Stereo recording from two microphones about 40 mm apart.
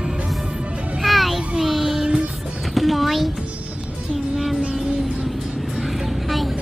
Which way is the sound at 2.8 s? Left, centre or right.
Centre.